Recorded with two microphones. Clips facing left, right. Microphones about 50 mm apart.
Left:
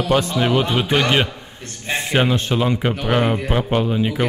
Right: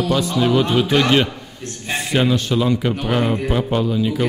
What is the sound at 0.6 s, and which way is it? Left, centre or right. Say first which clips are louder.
Speech: right 2 dB; centre.